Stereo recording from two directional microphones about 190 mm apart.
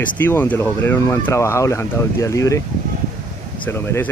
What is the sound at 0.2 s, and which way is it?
Speech, 10° left (ahead or behind).